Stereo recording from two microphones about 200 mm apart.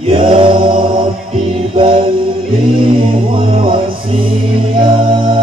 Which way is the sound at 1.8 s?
25° right (ahead or behind).